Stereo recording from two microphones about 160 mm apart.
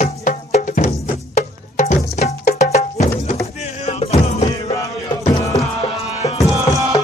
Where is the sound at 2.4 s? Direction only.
45° left (ahead or behind).